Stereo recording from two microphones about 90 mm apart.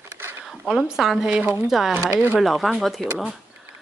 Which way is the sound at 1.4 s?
25° right (ahead or behind).